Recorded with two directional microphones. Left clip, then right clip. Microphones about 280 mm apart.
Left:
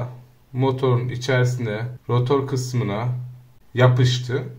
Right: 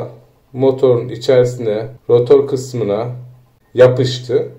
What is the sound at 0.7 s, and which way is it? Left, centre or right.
Speech, left.